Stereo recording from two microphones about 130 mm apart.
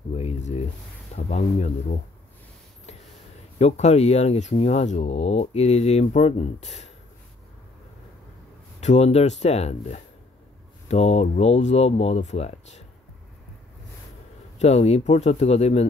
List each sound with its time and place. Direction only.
0.1 s a sound: 55° left (ahead or behind)
1.1 s speech: 65° left (ahead or behind)
3.5 s speech: 60° left (ahead or behind)
8.8 s speech: 55° left (ahead or behind)
14.6 s speech: 60° left (ahead or behind)